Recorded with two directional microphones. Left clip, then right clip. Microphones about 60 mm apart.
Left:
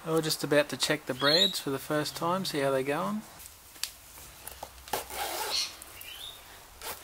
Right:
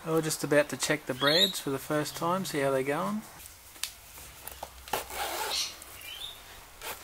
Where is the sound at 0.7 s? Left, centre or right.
Centre.